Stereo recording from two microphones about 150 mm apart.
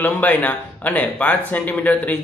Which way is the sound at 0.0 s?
10° left (ahead or behind).